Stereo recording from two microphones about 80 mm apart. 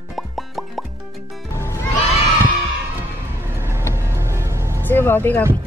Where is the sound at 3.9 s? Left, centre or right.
Right.